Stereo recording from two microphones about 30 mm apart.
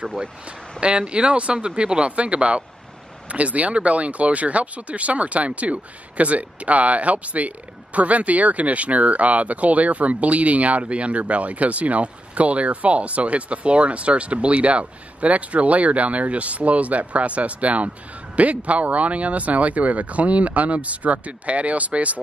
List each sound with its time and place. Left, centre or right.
0.5 s speech: right
3.3 s speech: right